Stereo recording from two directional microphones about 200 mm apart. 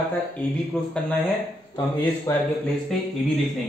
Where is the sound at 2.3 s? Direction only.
15° left (ahead or behind).